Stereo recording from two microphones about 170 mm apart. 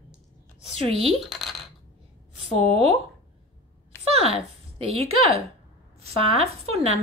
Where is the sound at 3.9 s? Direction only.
15° left (ahead or behind).